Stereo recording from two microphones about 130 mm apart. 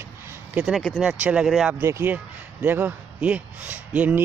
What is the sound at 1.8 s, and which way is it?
Speech, 15° right (ahead or behind).